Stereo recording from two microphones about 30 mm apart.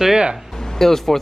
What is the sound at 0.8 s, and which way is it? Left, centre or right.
Speech, centre.